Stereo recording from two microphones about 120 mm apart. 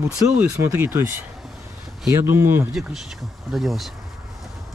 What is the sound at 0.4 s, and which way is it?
Speech, 20° right (ahead or behind).